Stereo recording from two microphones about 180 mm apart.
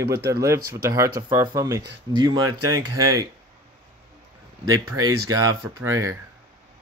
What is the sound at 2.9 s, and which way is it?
Speech, 20° right (ahead or behind).